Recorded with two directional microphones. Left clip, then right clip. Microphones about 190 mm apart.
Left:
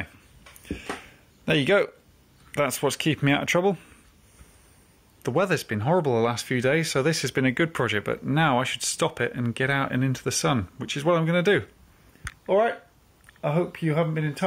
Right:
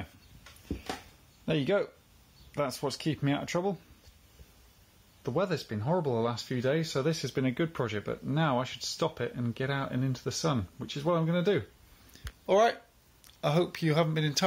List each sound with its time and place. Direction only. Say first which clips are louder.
1.4 s speech: left 8 dB; 10° left (ahead or behind)
5.2 s speech: left 7 dB; 15° left (ahead or behind)
12.4 s speech: left 3 dB; 15° right (ahead or behind)